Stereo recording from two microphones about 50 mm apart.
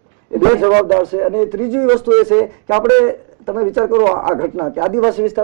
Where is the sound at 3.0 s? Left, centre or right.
Centre.